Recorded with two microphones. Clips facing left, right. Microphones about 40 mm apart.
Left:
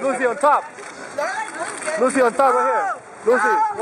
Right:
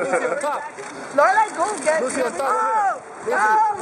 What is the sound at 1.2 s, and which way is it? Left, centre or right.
Speech, centre.